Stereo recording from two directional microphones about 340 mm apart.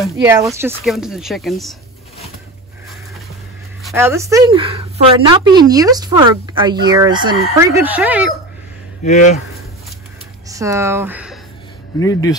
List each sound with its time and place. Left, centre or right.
0.0 s a woman's voice: centre
3.8 s a woman's voice: centre
9.0 s speech: left
10.5 s speech: centre
12.0 s speech: centre